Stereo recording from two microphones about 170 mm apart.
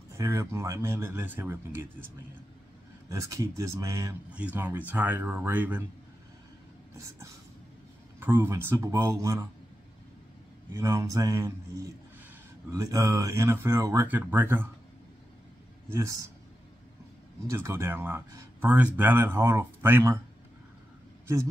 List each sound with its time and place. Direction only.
0.2 s speech: 15° right (ahead or behind)
4.3 s speech: 10° right (ahead or behind)
8.2 s speech: 15° right (ahead or behind)
10.7 s a man's voice: 15° right (ahead or behind)
15.9 s speech: 20° right (ahead or behind)
17.5 s speech: 15° right (ahead or behind)